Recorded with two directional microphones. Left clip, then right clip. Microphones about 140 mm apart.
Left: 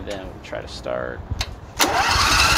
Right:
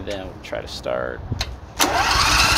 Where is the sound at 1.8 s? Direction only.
10° left (ahead or behind).